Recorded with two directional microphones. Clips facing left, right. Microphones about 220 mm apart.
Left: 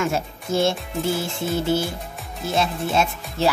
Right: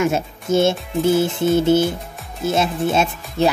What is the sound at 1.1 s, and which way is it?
Music, 20° right (ahead or behind).